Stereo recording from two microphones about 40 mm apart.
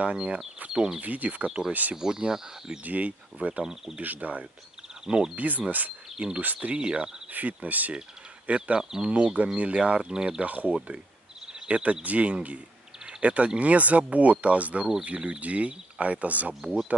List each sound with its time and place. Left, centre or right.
0.0 s speech: right
1.0 s speech: right
2.0 s speech: centre
2.8 s speech: right
5.0 s speech: centre
5.3 s speech: right
6.1 s speech: right
6.4 s speech: right
6.7 s speech: right
7.3 s speech: right
8.5 s speech: right
10.4 s speech: right
11.6 s speech: right